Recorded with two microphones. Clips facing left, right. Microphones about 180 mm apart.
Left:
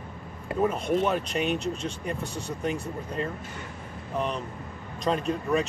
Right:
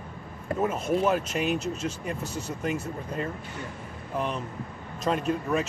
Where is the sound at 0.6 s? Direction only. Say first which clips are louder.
Even; 5° right (ahead or behind).